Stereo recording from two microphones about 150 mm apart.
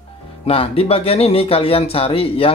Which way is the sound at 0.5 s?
40° left (ahead or behind).